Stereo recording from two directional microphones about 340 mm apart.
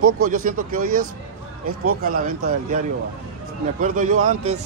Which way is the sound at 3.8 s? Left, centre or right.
Right.